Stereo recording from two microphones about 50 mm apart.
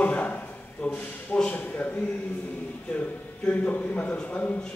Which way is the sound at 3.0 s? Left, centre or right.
Left.